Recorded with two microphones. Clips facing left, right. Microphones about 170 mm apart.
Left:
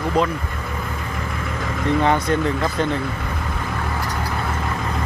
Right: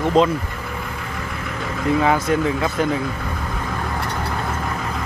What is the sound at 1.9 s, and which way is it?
Speech, 5° right (ahead or behind).